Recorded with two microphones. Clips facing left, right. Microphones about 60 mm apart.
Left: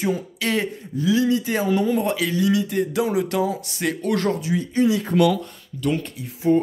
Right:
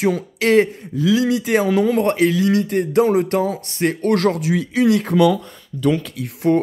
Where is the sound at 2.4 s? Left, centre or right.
Right.